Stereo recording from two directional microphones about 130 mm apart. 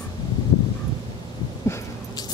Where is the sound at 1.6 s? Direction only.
20° left (ahead or behind).